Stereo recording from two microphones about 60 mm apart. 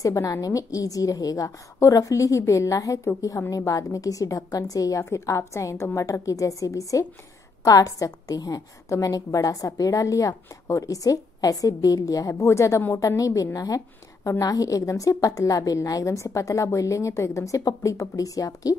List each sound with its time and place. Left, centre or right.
0.0 s a woman's voice: left
5.1 s a woman's voice: left
7.6 s a woman's voice: left
8.9 s a woman's voice: left
13.0 s a woman's voice: left